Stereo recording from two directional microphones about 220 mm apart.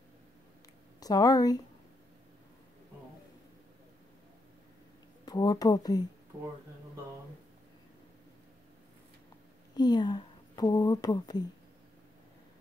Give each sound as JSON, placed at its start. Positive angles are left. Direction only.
{"t": 0.9, "sound": "speech", "side_deg": 15}
{"t": 5.2, "sound": "speech", "side_deg": 15}
{"t": 9.8, "sound": "speech", "side_deg": 20}